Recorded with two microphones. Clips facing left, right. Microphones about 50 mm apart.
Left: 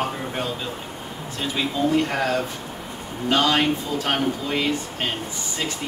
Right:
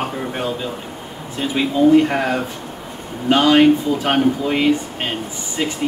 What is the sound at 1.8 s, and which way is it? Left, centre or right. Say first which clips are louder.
Speech: right 9 dB; centre.